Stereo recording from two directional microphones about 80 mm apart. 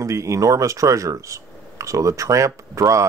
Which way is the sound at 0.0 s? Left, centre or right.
Right.